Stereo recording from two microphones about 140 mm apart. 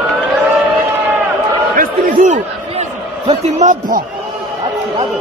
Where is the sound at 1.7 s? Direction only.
65° right (ahead or behind).